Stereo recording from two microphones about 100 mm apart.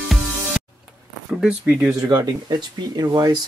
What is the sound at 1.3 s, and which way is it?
Speech, 10° right (ahead or behind).